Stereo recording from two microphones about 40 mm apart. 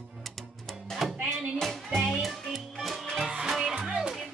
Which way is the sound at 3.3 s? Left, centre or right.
Centre.